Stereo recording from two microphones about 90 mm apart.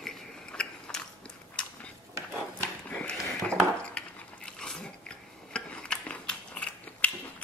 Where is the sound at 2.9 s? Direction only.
10° left (ahead or behind).